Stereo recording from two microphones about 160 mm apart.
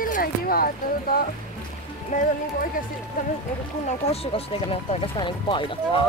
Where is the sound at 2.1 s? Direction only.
55° left (ahead or behind).